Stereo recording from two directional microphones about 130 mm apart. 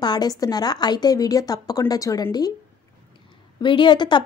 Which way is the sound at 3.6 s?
40° left (ahead or behind).